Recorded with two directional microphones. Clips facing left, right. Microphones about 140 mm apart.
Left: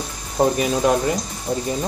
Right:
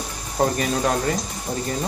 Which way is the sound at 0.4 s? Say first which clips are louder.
Left 3 dB; 10° left (ahead or behind).